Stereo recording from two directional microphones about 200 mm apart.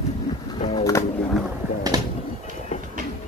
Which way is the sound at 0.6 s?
25° left (ahead or behind).